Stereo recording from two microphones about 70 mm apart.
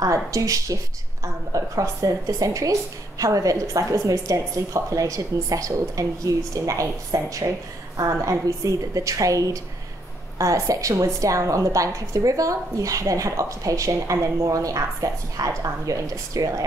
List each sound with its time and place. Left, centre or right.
0.0 s a woman's voice: right